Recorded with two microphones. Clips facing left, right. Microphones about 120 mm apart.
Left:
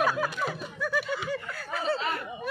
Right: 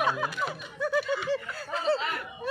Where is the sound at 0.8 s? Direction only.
25° right (ahead or behind).